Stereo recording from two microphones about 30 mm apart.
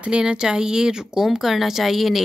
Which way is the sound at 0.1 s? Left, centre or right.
Right.